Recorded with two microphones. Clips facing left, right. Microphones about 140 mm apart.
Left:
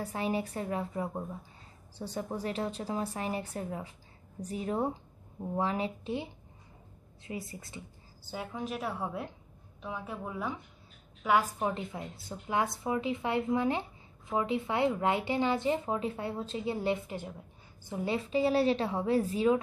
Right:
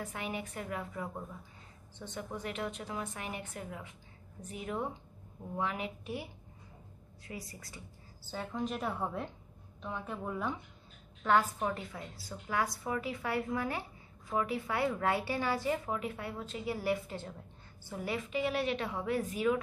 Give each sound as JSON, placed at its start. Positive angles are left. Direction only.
{"t": 0.0, "sound": "a woman's voice", "side_deg": 35}
{"t": 8.3, "sound": "a woman's voice", "side_deg": 10}